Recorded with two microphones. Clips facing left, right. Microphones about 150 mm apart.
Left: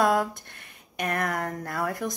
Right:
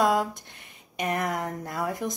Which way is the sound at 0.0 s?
15° right (ahead or behind).